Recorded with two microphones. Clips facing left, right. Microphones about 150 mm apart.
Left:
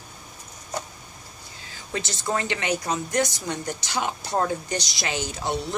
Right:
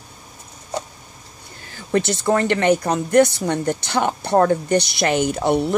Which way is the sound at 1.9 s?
60° right (ahead or behind).